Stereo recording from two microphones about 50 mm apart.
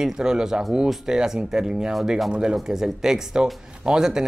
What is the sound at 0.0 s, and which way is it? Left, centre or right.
Speech, centre.